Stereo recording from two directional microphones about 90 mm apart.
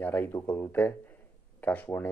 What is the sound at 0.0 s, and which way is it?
Speech, 20° left (ahead or behind).